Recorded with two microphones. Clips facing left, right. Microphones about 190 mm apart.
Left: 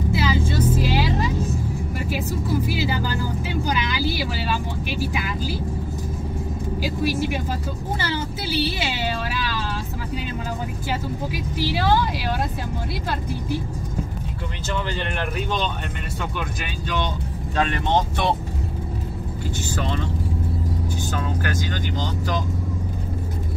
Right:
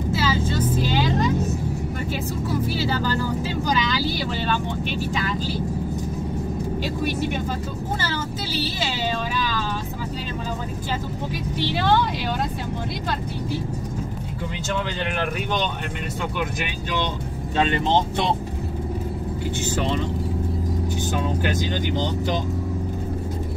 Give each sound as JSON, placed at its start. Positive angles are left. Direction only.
{"t": 0.1, "sound": "vehicle", "side_deg": 15}
{"t": 2.1, "sound": "music", "side_deg": 10}
{"t": 4.1, "sound": "speech", "side_deg": 10}
{"t": 6.8, "sound": "speech", "side_deg": 5}
{"t": 11.5, "sound": "speech", "side_deg": 5}
{"t": 17.6, "sound": "speech", "side_deg": -25}
{"t": 21.1, "sound": "speech", "side_deg": -20}